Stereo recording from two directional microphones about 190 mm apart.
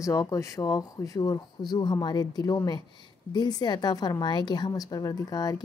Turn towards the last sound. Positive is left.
turn(degrees=20)  # may be behind; listen again after turning